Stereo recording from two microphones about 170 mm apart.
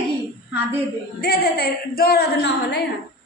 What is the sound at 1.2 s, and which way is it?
A woman's voice, 65° left (ahead or behind).